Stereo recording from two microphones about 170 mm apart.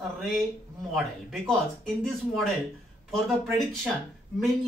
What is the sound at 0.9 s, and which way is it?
Speech, centre (ahead or behind).